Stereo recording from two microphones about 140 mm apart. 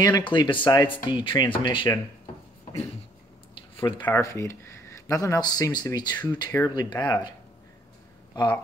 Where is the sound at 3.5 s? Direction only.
40° left (ahead or behind).